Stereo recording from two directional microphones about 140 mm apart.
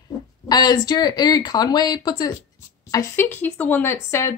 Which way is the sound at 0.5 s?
30° left (ahead or behind).